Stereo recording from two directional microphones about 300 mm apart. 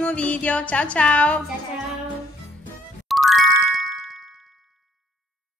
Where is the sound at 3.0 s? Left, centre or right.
Centre.